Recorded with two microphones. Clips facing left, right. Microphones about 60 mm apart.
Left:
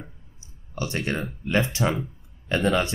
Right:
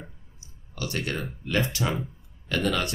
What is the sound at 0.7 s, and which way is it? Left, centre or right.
A man's voice, left.